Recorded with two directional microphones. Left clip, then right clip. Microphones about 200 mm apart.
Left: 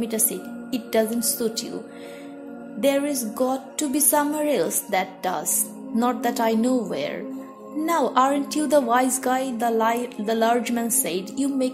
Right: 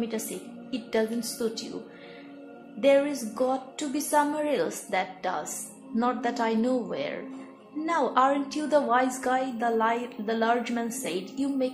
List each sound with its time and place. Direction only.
0.7 s a woman's voice: 40° left (ahead or behind)
2.8 s a woman's voice: 40° left (ahead or behind)